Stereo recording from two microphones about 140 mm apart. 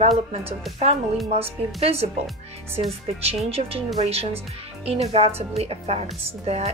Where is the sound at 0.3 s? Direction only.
45° right (ahead or behind).